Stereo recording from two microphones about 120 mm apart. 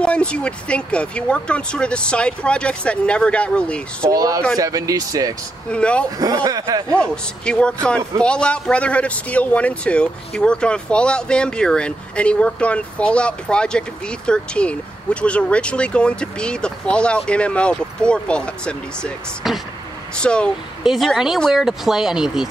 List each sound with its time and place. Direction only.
0.0 s a man's voice: 10° left (ahead or behind)
4.1 s speech: 30° right (ahead or behind)
5.7 s a man's voice: 10° left (ahead or behind)
6.0 s speech: 30° right (ahead or behind)
6.9 s a man's voice: 10° left (ahead or behind)
19.4 s speech: 5° right (ahead or behind)
20.2 s a man's voice: 10° left (ahead or behind)
20.8 s speech: centre (ahead or behind)